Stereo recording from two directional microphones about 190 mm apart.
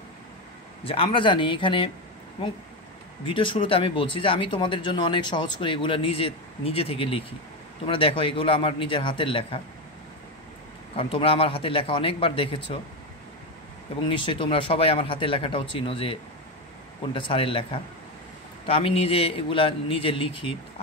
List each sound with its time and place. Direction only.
0.8 s speech: 30° left (ahead or behind)
3.3 s speech: 25° left (ahead or behind)
11.0 s speech: 30° left (ahead or behind)
14.0 s speech: 25° left (ahead or behind)